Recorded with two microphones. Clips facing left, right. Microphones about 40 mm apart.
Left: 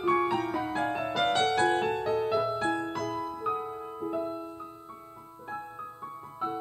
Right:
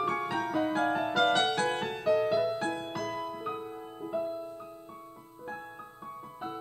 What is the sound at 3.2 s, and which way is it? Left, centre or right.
Music, centre.